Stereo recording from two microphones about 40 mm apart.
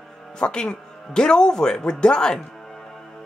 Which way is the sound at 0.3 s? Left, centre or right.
Left.